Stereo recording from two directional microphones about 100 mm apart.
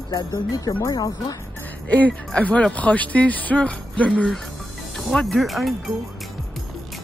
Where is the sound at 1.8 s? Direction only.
15° left (ahead or behind); by 5.9 s centre (ahead or behind).